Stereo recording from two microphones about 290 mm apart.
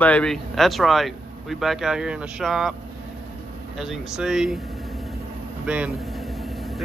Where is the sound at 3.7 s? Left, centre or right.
Centre.